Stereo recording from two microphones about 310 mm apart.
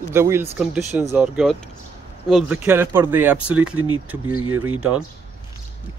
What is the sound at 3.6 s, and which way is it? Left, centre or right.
Speech, right.